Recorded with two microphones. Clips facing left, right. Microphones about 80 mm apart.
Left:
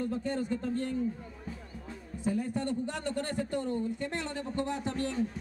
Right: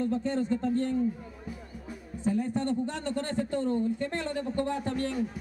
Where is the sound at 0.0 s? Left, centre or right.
Centre.